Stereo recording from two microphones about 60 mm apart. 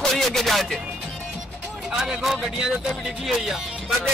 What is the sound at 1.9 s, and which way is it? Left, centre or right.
Speech, centre.